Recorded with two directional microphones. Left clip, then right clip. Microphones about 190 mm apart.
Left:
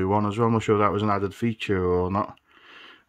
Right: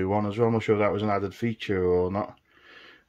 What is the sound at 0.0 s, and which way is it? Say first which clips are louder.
Speech: left 2 dB; 30° left (ahead or behind).